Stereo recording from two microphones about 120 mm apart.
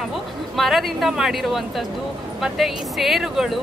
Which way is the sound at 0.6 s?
Centre (ahead or behind).